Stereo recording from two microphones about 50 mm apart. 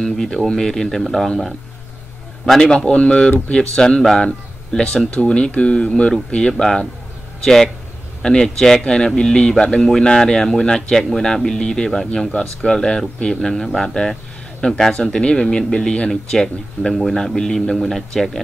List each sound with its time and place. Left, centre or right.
0.0 s a man's voice: centre
2.6 s a man's voice: centre
8.2 s a man's voice: centre
11.0 s a man's voice: centre